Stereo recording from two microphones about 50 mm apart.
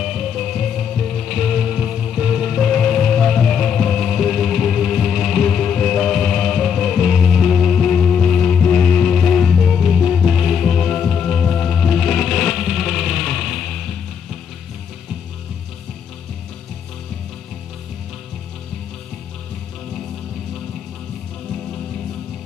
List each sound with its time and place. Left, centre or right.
0.0 s music: centre
2.7 s music: centre
5.4 s music: centre
9.1 s music: centre
9.6 s music: centre